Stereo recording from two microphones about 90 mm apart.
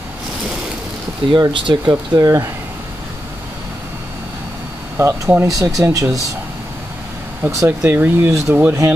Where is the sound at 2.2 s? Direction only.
30° right (ahead or behind).